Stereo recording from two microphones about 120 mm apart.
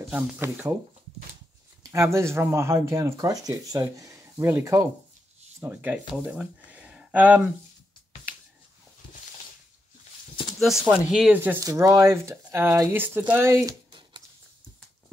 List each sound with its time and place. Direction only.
0.0 s speech: 15° right (ahead or behind)
1.8 s speech: 25° right (ahead or behind)
10.6 s speech: centre (ahead or behind)
11.6 s speech: 25° right (ahead or behind)